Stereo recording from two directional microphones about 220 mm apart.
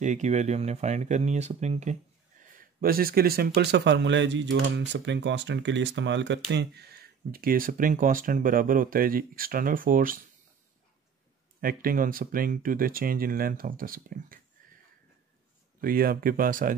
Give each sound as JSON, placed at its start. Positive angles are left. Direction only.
{"t": 0.0, "sound": "speech", "side_deg": -35}
{"t": 11.6, "sound": "speech", "side_deg": -40}
{"t": 15.8, "sound": "speech", "side_deg": -40}